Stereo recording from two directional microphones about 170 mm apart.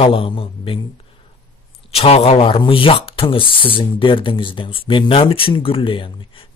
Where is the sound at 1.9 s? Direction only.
35° left (ahead or behind).